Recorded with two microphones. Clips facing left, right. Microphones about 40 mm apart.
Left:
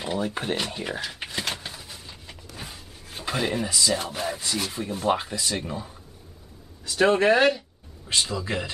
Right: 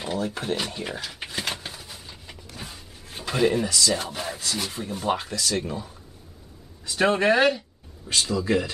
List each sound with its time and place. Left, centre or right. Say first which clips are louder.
0.2 s speech: even; left
0.6 s speech: left 1 dB; centre
1.4 s a sound: right 1 dB; centre
3.3 s speech: right 4 dB; centre
3.6 s speech: right 1 dB; centre
5.1 s speech: even; centre
6.9 s speech: left 1 dB; centre
8.1 s speech: right 3 dB; centre